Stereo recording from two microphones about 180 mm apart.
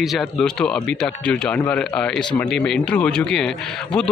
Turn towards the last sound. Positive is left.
turn(degrees=5)  # may be behind; listen again after turning